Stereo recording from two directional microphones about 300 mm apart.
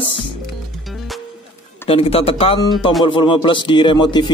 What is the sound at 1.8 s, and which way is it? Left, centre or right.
Speech, centre.